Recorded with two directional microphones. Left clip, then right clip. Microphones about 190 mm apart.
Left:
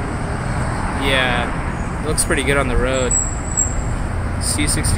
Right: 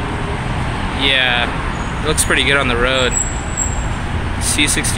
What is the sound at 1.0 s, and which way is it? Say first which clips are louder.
Speech: right 4 dB; centre (ahead or behind).